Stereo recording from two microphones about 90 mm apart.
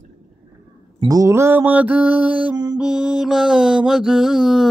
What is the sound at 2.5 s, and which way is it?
Mantra, 50° right (ahead or behind).